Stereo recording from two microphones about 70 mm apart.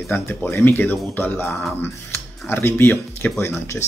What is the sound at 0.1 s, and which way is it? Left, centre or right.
Speech, left.